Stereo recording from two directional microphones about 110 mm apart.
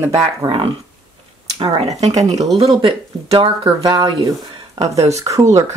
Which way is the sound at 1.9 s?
90° right.